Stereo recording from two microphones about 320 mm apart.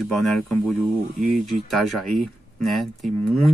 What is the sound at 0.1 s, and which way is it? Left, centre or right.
Speech, centre.